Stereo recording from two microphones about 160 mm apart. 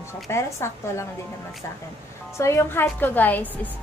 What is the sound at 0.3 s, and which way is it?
Speech, 15° left (ahead or behind).